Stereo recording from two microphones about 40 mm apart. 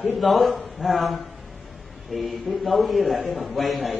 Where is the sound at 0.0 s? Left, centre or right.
Centre.